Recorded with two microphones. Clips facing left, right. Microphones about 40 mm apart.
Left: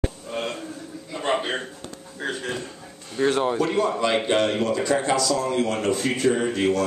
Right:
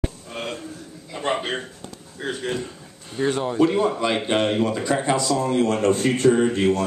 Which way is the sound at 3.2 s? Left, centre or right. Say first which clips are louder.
Right 1 dB; centre.